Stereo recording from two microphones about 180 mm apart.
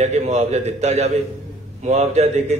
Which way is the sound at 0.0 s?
40° right (ahead or behind).